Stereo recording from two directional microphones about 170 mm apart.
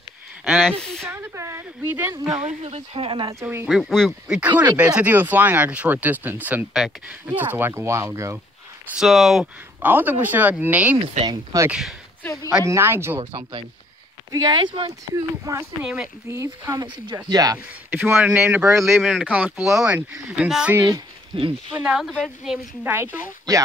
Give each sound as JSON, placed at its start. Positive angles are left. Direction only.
{"t": 0.5, "sound": "speech", "side_deg": 0}
{"t": 1.0, "sound": "speech", "side_deg": -15}
{"t": 2.3, "sound": "speech", "side_deg": -40}
{"t": 3.3, "sound": "speech", "side_deg": -15}
{"t": 3.6, "sound": "speech", "side_deg": 0}
{"t": 4.4, "sound": "speech", "side_deg": -10}
{"t": 8.9, "sound": "speech", "side_deg": 0}
{"t": 14.3, "sound": "speech", "side_deg": -25}
{"t": 15.8, "sound": "speech", "side_deg": -5}
{"t": 17.9, "sound": "speech", "side_deg": -10}
{"t": 20.7, "sound": "speech", "side_deg": -20}
{"t": 21.7, "sound": "speech", "side_deg": -5}
{"t": 23.1, "sound": "speech", "side_deg": -20}